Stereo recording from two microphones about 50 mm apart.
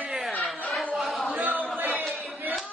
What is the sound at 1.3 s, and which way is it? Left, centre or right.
Speech, right.